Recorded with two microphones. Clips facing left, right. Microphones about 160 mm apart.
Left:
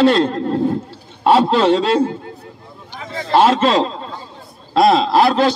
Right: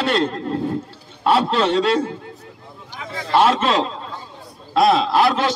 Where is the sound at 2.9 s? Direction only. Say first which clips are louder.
Left 3 dB; 35° left (ahead or behind).